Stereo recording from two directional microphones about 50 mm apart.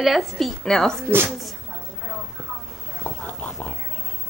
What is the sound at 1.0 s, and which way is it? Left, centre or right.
Speech, right.